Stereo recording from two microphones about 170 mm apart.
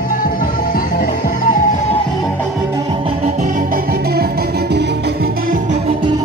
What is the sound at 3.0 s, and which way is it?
Music, 40° right (ahead or behind).